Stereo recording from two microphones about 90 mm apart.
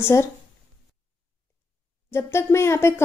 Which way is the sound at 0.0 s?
30° left (ahead or behind).